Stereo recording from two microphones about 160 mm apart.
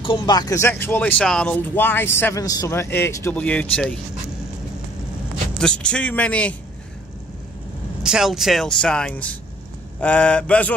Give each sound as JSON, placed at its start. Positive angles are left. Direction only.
{"t": 0.0, "sound": "speech", "side_deg": 30}
{"t": 5.6, "sound": "speech", "side_deg": 5}
{"t": 8.0, "sound": "speech", "side_deg": -5}